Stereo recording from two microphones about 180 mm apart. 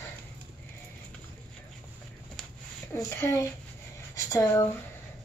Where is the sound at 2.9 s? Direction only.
15° left (ahead or behind).